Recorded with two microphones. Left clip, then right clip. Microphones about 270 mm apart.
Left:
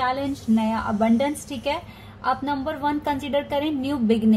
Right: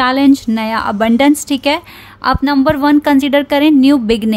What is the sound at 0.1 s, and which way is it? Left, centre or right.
A woman's voice, right.